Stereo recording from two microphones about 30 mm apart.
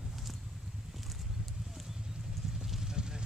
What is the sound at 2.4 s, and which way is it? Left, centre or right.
Vehicle, right.